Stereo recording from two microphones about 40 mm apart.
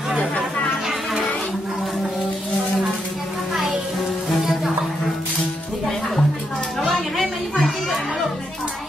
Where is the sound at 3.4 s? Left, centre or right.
Centre.